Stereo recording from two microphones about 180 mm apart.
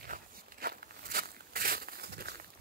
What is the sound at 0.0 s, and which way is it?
Walk, 50° right (ahead or behind).